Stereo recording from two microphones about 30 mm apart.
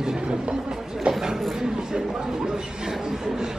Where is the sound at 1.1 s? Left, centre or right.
Centre.